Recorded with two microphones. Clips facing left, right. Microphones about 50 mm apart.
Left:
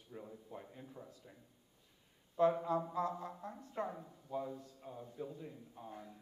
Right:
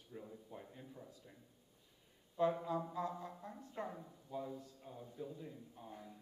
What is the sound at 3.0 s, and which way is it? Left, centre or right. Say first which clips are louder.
Speech: left 4 dB; centre.